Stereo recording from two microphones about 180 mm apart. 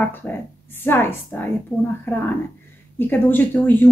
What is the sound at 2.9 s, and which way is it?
Speech, 10° left (ahead or behind).